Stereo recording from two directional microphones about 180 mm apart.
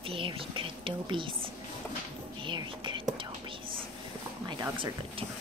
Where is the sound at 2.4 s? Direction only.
25° right (ahead or behind).